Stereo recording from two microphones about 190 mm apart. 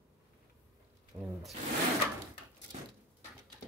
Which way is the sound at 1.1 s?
20° right (ahead or behind).